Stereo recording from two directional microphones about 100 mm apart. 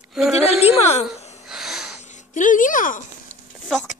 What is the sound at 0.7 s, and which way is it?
Speech, 90° left.